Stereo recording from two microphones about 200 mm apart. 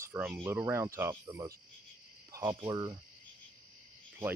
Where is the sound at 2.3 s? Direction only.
15° right (ahead or behind).